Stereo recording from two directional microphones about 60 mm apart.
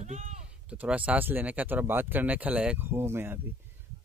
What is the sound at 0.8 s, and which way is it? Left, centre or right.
Speech, right.